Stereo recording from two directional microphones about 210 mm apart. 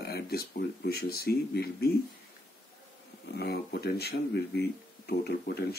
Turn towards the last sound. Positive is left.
turn(degrees=50)  # may be behind; listen again after turning